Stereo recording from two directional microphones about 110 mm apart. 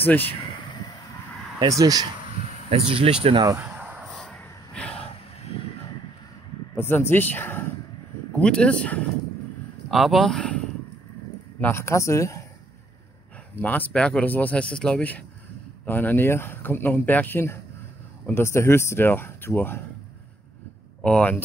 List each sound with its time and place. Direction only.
0.0 s a man's voice: 15° left (ahead or behind)
1.7 s speech: 35° right (ahead or behind)
2.7 s speech: 60° right (ahead or behind)
3.6 s a sound: 15° right (ahead or behind)
4.1 s a sound: 5° left (ahead or behind)
5.4 s vehicle: 70° left (ahead or behind)
6.7 s a man's voice: 20° left (ahead or behind)
9.8 s speech: centre (ahead or behind)
11.6 s speech: 25° left (ahead or behind)
13.6 s a man's voice: 15° left (ahead or behind)
21.0 s speech: 10° left (ahead or behind)